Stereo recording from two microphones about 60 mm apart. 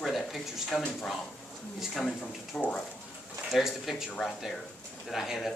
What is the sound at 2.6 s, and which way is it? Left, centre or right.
Speech, centre.